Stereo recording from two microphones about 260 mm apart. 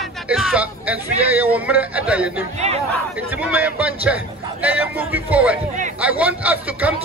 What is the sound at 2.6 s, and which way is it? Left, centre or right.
Speech, right.